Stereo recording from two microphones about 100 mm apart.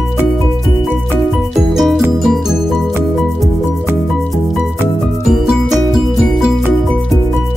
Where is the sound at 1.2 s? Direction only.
Centre (ahead or behind).